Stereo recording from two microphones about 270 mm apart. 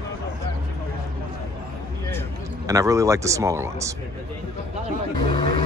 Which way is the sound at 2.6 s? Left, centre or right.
Centre.